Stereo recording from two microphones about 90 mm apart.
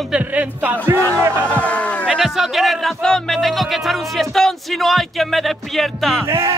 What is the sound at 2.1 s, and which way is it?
Speech, centre (ahead or behind).